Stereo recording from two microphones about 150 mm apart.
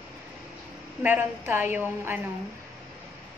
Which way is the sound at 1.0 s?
15° right (ahead or behind).